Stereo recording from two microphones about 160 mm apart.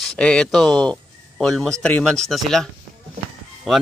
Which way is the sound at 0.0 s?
5° left (ahead or behind).